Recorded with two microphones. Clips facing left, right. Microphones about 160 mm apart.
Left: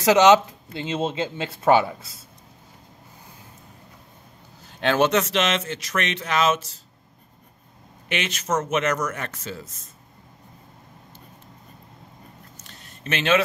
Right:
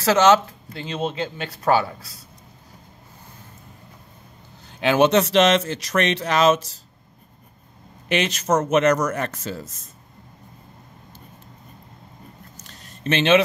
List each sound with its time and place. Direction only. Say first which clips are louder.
0.0 s speech: left 1 dB; 15° left (ahead or behind)
4.6 s a sound: right 2 dB; centre (ahead or behind)
4.9 s speech: right 4 dB; 20° right (ahead or behind)
5.2 s speech: right 7 dB; 35° right (ahead or behind)
8.1 s speech: right 5 dB; 40° right (ahead or behind)
12.6 s a sound: right 7 dB; 30° right (ahead or behind)